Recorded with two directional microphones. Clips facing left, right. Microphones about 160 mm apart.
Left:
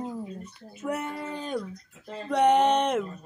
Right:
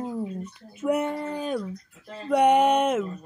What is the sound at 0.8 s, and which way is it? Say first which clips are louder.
Speech: right 6 dB; 15° right (ahead or behind).